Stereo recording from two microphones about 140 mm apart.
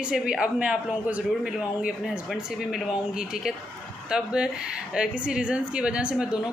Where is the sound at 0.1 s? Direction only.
5° right (ahead or behind).